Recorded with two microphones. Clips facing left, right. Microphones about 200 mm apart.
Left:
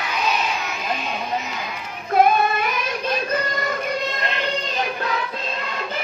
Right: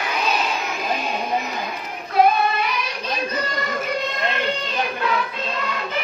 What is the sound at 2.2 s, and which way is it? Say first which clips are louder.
Child singing: even; 50° left (ahead or behind).